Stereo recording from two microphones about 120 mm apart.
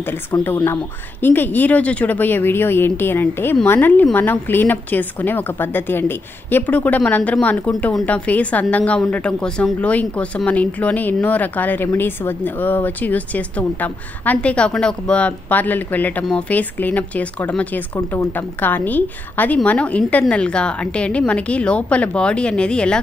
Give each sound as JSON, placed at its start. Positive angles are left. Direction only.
{"t": 0.3, "sound": "a woman's voice", "side_deg": 25}